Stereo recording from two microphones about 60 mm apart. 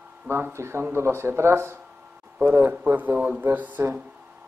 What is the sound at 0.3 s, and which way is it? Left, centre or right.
Speech, right.